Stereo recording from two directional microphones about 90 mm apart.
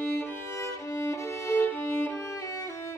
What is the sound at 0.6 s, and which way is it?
Music, 35° left (ahead or behind).